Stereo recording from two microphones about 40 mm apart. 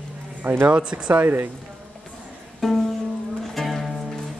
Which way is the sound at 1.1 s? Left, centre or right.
Right.